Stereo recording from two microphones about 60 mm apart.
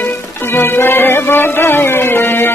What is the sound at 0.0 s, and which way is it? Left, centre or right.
Music, left.